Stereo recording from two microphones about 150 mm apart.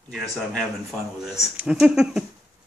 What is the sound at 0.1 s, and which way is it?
Speech, 5° left (ahead or behind).